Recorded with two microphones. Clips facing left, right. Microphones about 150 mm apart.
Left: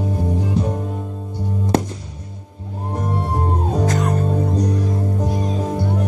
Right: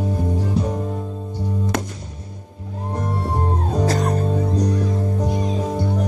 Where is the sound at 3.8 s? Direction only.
35° right (ahead or behind).